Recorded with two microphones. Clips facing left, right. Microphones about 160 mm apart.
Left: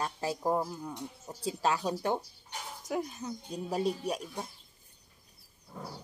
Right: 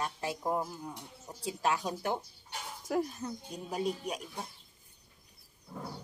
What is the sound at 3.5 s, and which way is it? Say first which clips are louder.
Speech: left 4 dB; 30° left (ahead or behind).